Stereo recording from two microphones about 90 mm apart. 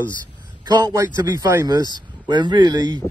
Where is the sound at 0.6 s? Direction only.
50° right (ahead or behind).